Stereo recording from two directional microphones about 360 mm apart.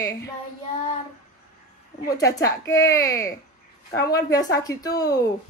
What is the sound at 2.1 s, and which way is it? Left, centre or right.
Speech, centre.